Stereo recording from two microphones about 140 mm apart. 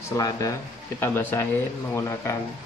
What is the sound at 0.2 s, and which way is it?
Speech, 25° left (ahead or behind).